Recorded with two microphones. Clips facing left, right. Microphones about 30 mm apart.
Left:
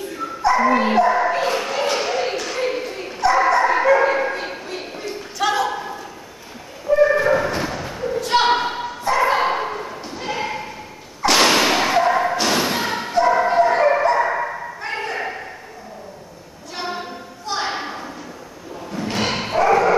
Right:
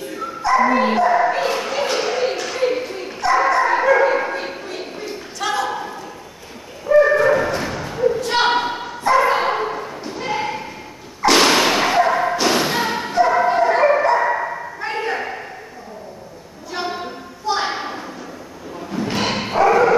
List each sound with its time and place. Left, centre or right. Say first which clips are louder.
0.4 s bow-wow: right 1 dB; centre
7.0 s a sound: right 3 dB; centre
8.1 s bow-wow: left 2 dB; centre
11.2 s thump: right 1 dB; centre
17.5 s a sound: right 3 dB; centre
18.9 s bow-wow: right 1 dB; centre